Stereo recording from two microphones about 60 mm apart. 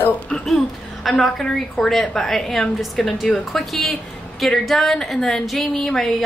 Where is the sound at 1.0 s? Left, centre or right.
Centre.